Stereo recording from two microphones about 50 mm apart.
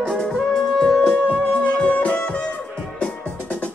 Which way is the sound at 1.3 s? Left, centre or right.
Left.